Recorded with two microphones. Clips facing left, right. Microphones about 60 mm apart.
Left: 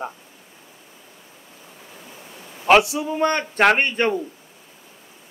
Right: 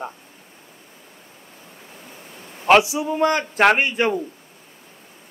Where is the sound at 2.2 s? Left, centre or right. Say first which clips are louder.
Even; centre.